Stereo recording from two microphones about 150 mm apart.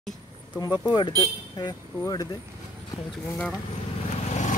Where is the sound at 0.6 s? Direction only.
25° left (ahead or behind).